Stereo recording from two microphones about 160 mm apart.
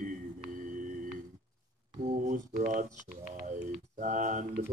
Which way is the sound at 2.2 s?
55° right (ahead or behind).